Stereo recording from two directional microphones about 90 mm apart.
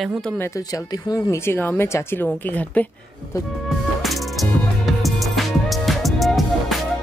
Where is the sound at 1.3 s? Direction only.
25° left (ahead or behind).